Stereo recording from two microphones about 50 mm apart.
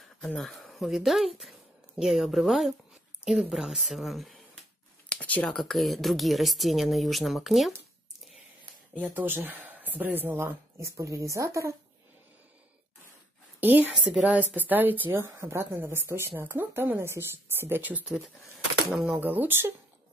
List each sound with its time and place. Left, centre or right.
0.4 s speech: centre
5.1 s a sound: left
5.5 s speech: centre
8.9 s speech: right
10.8 s a woman's voice: right
13.6 s a woman's voice: right
15.1 s speech: right
19.0 s speech: right